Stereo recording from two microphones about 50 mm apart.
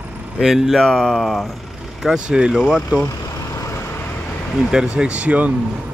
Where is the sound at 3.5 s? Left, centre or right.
Left.